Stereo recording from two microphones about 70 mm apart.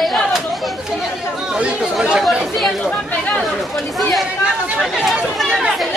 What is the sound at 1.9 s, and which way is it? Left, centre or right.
Speech, centre.